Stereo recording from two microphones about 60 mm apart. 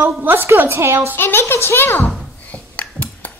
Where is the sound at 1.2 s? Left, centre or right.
Left.